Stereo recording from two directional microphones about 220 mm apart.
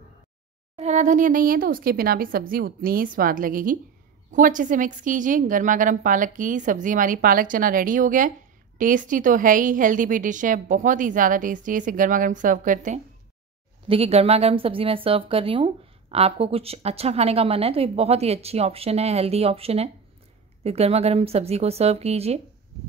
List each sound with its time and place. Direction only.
0.7 s a woman's voice: 30° right (ahead or behind)